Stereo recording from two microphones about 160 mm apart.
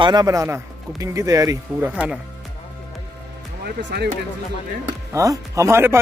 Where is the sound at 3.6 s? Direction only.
90° right.